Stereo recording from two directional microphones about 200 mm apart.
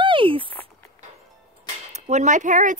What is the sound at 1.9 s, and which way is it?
Speech, 35° right (ahead or behind).